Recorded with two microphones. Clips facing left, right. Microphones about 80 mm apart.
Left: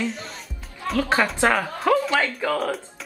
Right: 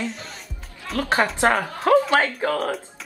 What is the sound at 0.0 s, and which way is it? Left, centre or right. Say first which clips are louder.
Music: left 2 dB; centre.